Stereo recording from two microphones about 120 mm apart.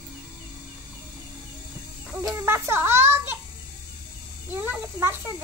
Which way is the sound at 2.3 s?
20° right (ahead or behind).